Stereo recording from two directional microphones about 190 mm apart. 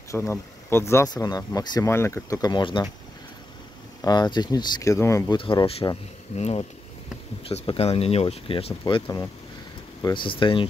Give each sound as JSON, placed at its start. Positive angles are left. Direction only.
{"t": 0.1, "sound": "speech", "side_deg": 15}
{"t": 4.0, "sound": "speech", "side_deg": 20}
{"t": 5.4, "sound": "speech", "side_deg": 25}
{"t": 9.0, "sound": "speech", "side_deg": 15}